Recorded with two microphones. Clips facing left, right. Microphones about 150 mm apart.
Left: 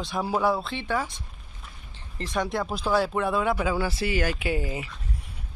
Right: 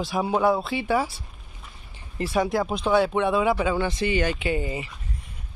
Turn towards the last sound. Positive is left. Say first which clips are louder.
# right 2 dB
turn(degrees=0)  # may be behind; listen again after turning